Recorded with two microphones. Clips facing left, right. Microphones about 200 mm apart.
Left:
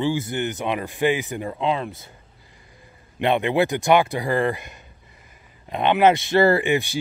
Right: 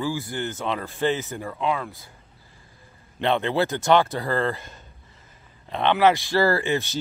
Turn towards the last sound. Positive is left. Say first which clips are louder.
# left 4 dB
turn(degrees=15)  # may be behind; listen again after turning